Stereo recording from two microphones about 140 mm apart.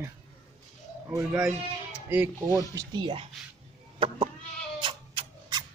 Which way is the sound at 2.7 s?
20° right (ahead or behind).